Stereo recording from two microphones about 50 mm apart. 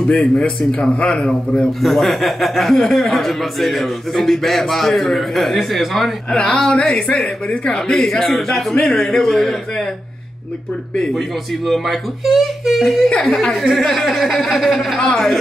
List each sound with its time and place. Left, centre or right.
0.1 s speech: left
1.8 s a man's voice: centre
6.3 s a woman's voice: centre
8.7 s a woman's voice: centre
9.0 s a woman's voice: centre
11.1 s a man's voice: centre
15.0 s a woman's voice: centre